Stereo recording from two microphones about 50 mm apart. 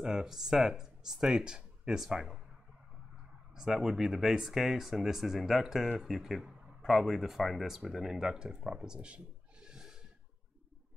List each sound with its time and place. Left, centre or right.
0.0 s speech: centre
3.5 s speech: centre
8.6 s a sound: centre